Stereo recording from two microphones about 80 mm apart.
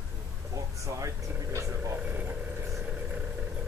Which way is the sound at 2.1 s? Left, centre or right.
Right.